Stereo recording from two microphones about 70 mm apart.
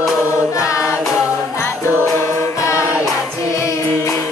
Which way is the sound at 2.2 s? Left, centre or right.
Left.